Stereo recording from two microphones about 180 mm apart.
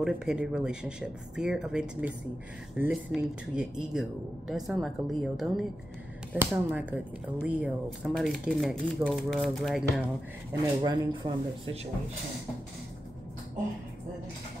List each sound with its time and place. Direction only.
0.0 s speech: 5° right (ahead or behind)
10.5 s speech: 25° right (ahead or behind)